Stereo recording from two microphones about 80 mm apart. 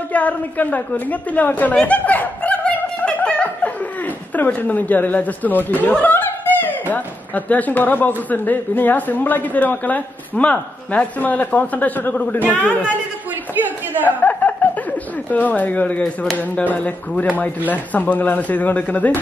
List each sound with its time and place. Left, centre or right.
0.1 s a sound: centre
4.5 s a woman's voice: centre
14.0 s a woman's voice: left